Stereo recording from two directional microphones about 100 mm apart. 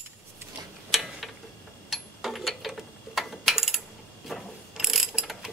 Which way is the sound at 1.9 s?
Centre (ahead or behind).